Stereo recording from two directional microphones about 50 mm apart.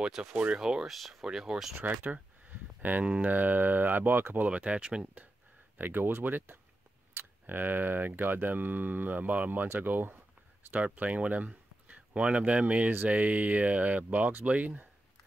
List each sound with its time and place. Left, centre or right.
0.2 s speech: centre
0.8 s speech: centre
1.8 s speech: right
4.5 s speech: right
5.8 s speech: right
10.7 s speech: right